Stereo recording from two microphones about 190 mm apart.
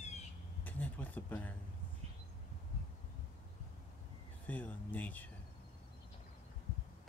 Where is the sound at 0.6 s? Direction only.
10° left (ahead or behind).